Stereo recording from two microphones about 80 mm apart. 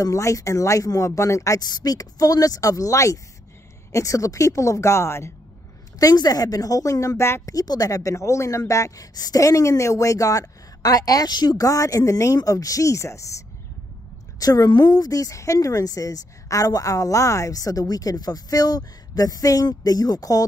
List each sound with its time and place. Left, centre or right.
0.0 s speech: left
1.6 s a woman's voice: left
5.9 s speech: left
7.5 s speech: left
14.4 s speech: left